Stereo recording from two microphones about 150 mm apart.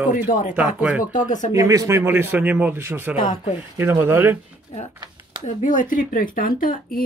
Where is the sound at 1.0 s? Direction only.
60° left (ahead or behind).